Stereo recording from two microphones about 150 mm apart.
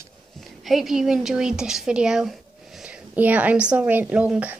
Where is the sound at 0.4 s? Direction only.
Centre (ahead or behind).